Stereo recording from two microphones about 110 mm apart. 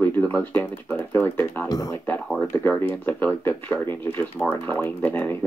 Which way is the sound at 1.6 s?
30° left (ahead or behind).